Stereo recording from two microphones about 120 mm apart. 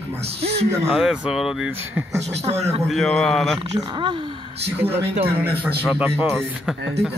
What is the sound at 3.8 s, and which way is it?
Speech, 40° right (ahead or behind).